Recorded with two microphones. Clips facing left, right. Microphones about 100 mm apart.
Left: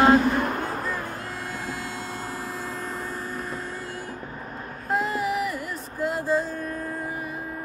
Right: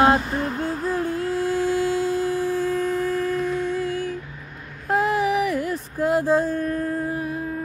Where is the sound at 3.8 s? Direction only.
90° right.